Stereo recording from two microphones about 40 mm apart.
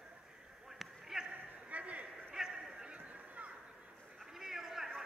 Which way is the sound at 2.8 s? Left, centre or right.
Right.